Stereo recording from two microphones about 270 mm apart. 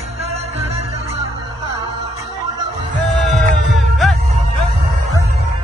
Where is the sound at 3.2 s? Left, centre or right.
Centre.